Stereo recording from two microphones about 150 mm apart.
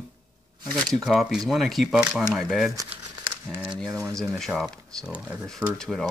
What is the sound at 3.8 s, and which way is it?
Speech, 20° right (ahead or behind).